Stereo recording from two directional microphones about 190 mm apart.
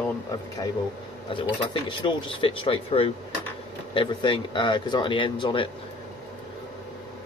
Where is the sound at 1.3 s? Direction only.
25° left (ahead or behind).